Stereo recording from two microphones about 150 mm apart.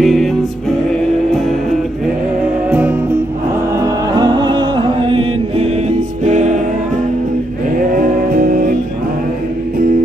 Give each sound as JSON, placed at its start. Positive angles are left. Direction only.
{"t": 0.0, "sound": "music", "side_deg": 0}
{"t": 3.8, "sound": "music", "side_deg": -25}
{"t": 8.3, "sound": "music", "side_deg": -75}